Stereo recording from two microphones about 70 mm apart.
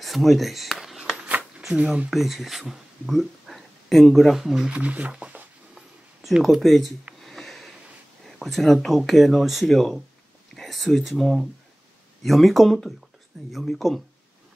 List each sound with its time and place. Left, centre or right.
0.0 s a sound: centre
2.0 s speech: centre
4.6 s speech: centre
5.1 s a sound: centre
6.2 s speech: centre
7.2 s sniff: centre
8.3 s speech: centre